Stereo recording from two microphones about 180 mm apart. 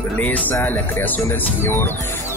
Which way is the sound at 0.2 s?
10° left (ahead or behind).